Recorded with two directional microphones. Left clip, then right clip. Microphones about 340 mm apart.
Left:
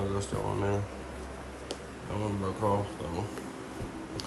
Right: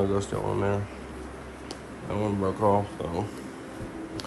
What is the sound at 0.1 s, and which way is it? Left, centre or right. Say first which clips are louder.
Speech: right 5 dB; centre.